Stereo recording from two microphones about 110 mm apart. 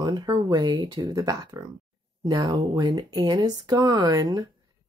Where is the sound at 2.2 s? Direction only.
45° right (ahead or behind).